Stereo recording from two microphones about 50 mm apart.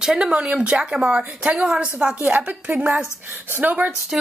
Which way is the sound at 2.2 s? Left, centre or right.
Right.